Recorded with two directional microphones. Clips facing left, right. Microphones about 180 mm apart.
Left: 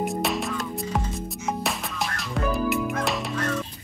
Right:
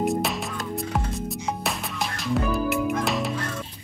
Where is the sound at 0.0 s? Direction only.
Centre (ahead or behind).